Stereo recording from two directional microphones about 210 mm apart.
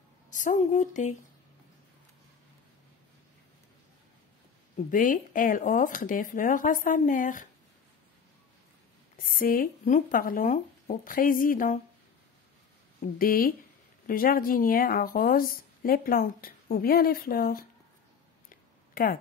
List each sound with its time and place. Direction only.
0.3 s speech: 35° left (ahead or behind)
4.7 s speech: 40° left (ahead or behind)
9.1 s speech: 40° left (ahead or behind)
13.0 s speech: 45° left (ahead or behind)
18.5 s a sound: 45° left (ahead or behind)